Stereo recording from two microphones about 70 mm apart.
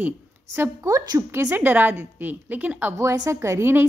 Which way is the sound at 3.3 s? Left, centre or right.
Right.